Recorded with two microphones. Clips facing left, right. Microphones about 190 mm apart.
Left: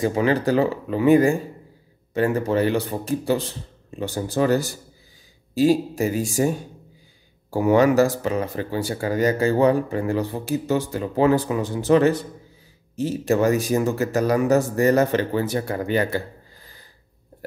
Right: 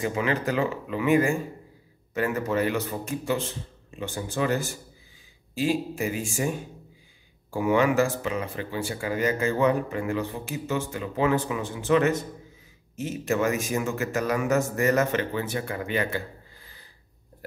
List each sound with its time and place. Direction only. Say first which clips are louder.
0.0 s speech: left 6 dB; 35° left (ahead or behind)
7.5 s speech: left 5 dB; 40° left (ahead or behind)